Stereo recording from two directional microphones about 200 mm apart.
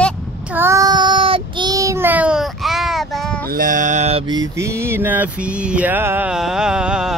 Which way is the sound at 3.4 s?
45° right (ahead or behind).